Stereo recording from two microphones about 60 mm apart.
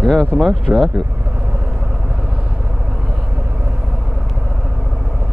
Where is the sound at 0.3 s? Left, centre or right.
Centre.